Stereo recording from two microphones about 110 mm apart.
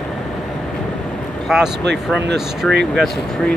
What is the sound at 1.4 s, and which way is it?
Speech, 5° right (ahead or behind).